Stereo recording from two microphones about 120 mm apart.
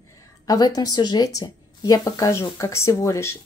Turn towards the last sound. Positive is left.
turn(degrees=25)  # may be behind; listen again after turning